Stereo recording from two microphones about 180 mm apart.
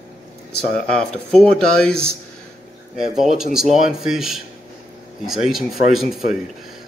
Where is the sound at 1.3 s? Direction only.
5° left (ahead or behind).